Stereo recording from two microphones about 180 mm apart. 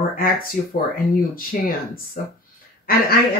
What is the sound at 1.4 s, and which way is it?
Speech, 55° left (ahead or behind).